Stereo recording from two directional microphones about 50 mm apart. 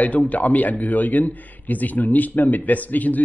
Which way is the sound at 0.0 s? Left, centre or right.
Left.